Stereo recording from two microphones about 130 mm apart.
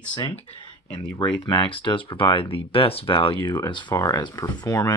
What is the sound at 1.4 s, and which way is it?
Speech, 35° left (ahead or behind).